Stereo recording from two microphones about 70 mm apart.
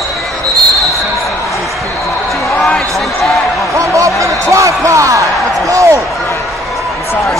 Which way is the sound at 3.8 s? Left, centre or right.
Right.